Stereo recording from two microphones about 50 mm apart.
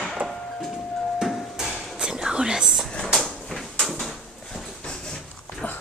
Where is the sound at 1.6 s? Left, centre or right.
Centre.